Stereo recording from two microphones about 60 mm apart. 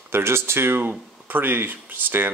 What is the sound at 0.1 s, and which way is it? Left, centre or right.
Speech, right.